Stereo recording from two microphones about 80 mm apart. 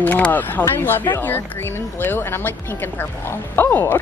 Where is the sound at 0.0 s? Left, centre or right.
Left.